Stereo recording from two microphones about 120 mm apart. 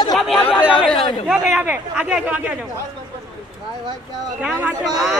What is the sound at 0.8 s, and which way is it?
Speech, 5° right (ahead or behind).